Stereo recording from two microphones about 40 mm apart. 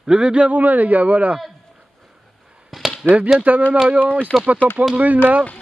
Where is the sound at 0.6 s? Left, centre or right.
Right.